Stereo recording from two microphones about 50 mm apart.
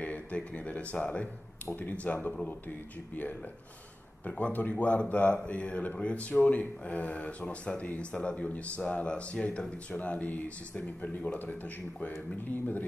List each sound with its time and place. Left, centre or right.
0.0 s speech: left
1.8 s speech: left
4.3 s speech: left